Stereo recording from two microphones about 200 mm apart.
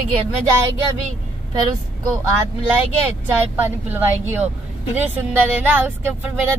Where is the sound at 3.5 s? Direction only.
10° right (ahead or behind).